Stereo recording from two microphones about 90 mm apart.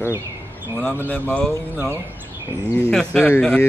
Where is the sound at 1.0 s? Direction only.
20° left (ahead or behind).